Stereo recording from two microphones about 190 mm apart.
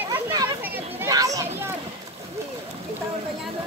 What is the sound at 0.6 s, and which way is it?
Children playing, 10° right (ahead or behind).